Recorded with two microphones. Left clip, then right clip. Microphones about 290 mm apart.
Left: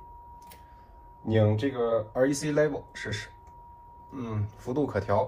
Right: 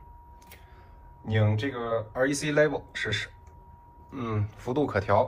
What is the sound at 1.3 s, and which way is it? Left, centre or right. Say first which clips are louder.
Speech: left 3 dB; centre.